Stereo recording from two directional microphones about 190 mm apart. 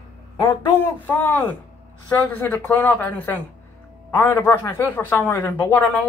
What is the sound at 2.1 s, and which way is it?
A man's voice, 5° left (ahead or behind).